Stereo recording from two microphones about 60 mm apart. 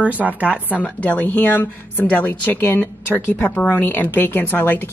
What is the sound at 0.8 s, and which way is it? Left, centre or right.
A woman's voice, left.